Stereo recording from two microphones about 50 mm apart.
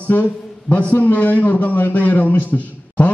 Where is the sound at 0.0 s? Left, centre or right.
Left.